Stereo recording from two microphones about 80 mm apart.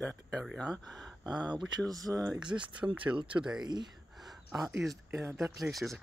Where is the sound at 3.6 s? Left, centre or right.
Right.